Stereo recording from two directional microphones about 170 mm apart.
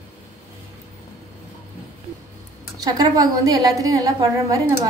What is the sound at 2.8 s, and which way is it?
A woman's voice, 20° right (ahead or behind).